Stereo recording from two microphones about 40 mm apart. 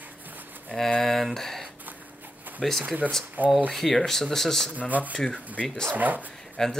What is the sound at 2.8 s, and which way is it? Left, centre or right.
Speech, right.